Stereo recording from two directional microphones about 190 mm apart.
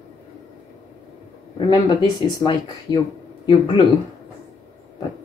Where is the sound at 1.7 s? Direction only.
20° left (ahead or behind).